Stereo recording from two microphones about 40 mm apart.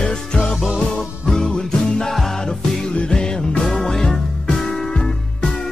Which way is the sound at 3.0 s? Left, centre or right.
Left.